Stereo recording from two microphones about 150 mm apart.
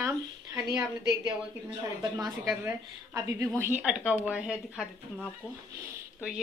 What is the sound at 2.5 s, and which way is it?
A woman's voice, 15° right (ahead or behind).